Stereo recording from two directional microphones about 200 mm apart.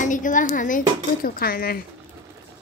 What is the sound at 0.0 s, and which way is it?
A woman's voice, 40° left (ahead or behind).